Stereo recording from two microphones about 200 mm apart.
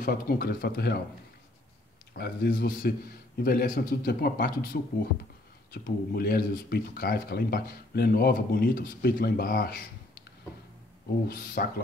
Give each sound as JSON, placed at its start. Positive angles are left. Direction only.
{"t": 0.0, "sound": "speech", "side_deg": 45}
{"t": 2.1, "sound": "speech", "side_deg": 55}
{"t": 5.7, "sound": "speech", "side_deg": 50}
{"t": 11.2, "sound": "speech", "side_deg": 45}